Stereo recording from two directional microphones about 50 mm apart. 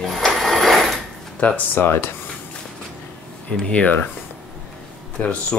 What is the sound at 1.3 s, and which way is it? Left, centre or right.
Speech, left.